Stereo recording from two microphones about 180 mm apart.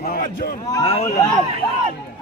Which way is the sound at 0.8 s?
35° left (ahead or behind).